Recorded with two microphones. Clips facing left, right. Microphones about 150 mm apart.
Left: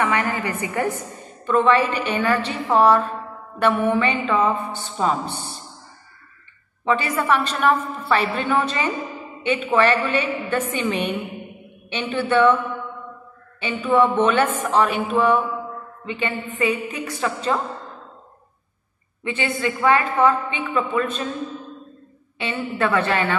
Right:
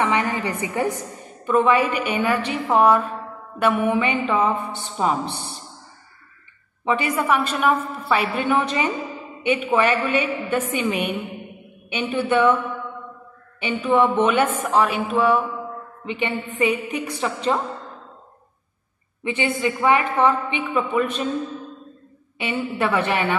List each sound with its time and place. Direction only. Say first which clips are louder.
0.0 s a woman's voice: even; 20° right (ahead or behind)
6.8 s a woman's voice: even; 15° right (ahead or behind)
13.6 s a woman's voice: even; 15° right (ahead or behind)
16.1 s a woman's voice: right 1 dB; 20° right (ahead or behind)
19.2 s a woman's voice: right 1 dB; 15° right (ahead or behind)
22.4 s a woman's voice: even; 15° right (ahead or behind)